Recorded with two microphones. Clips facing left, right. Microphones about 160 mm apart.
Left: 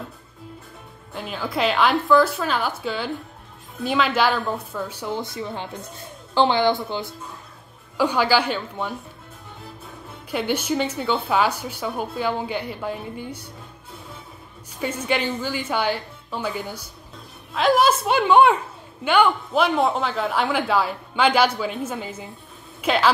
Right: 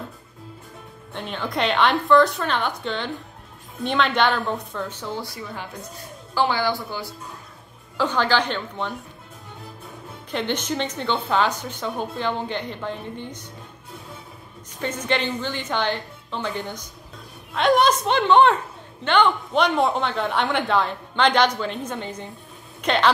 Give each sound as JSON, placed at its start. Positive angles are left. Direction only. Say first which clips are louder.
{"t": 1.1, "sound": "a man's voice", "louder": "even", "side_deg": 5}
{"t": 8.0, "sound": "a woman's voice", "louder": "left 2 dB", "side_deg": 10}
{"t": 10.3, "sound": "a woman's voice", "louder": "left 2 dB", "side_deg": 10}
{"t": 14.8, "sound": "a woman's voice", "louder": "left 1 dB", "side_deg": 10}